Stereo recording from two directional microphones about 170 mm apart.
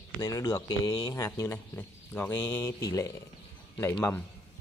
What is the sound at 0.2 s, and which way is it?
A man's voice, 20° left (ahead or behind).